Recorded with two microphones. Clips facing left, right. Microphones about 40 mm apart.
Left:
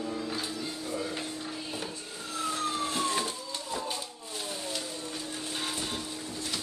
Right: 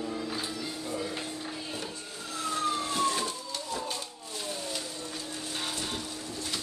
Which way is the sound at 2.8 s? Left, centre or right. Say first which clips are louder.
Right 1 dB; centre.